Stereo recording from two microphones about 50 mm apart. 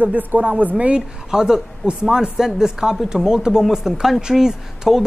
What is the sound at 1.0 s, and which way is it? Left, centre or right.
Speech, centre.